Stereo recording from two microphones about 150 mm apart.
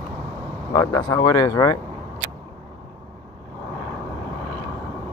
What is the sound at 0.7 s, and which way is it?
Speech, 30° left (ahead or behind).